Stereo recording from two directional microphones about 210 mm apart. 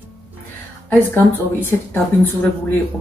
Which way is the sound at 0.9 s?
10° left (ahead or behind).